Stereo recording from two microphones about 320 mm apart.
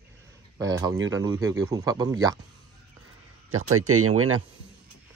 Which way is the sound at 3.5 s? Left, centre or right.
Right.